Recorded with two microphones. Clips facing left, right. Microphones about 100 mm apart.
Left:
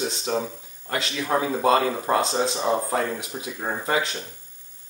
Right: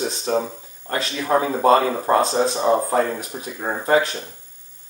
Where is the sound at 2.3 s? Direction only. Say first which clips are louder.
Right 4 dB; 35° right (ahead or behind).